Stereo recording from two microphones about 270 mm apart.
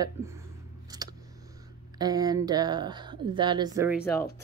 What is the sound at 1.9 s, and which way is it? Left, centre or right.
A woman's voice, centre.